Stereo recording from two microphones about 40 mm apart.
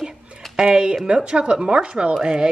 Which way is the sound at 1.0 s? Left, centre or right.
Right.